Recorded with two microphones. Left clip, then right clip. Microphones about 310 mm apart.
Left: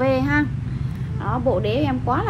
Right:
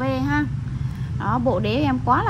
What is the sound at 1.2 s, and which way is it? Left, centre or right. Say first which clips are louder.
A woman's voice: even; right.